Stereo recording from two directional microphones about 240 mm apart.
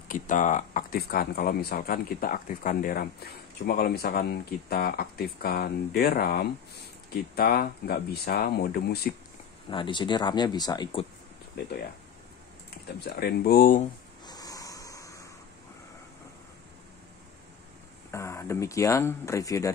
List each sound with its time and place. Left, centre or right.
0.1 s speech: left
9.7 s speech: left
11.6 s speech: left
13.0 s speech: left
14.2 s a sound: centre
18.1 s speech: centre